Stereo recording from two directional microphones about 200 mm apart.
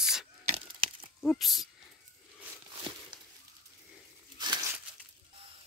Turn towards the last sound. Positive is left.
turn(degrees=-20)  # may be behind; listen again after turning